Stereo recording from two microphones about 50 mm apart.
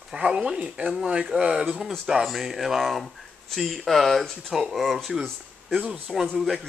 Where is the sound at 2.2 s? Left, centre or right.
Centre.